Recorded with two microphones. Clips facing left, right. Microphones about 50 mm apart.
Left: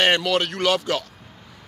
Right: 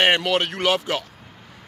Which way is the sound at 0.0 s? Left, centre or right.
Right.